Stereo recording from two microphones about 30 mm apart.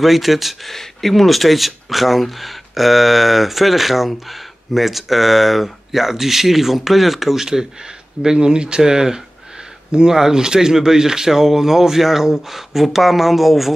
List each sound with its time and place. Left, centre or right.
0.0 s speech: centre
0.7 s speech: centre
8.4 s speech: right; by 13.7 s centre